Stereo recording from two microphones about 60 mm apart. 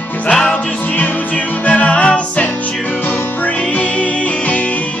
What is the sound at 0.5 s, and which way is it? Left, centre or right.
Music, left.